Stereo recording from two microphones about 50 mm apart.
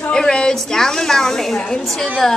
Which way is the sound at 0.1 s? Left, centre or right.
Centre.